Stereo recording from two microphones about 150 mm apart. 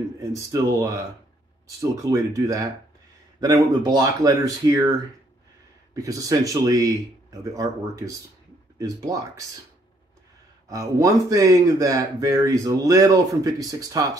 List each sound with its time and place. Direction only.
0.3 s speech: 20° right (ahead or behind)
5.9 s speech: 20° right (ahead or behind)
10.7 s speech: 20° right (ahead or behind)